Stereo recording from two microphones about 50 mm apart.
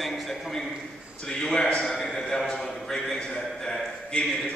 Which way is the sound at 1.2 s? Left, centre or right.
Centre.